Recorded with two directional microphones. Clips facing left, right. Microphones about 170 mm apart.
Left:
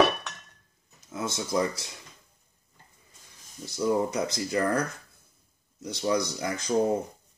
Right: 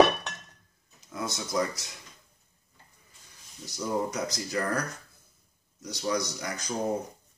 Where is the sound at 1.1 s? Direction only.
25° left (ahead or behind).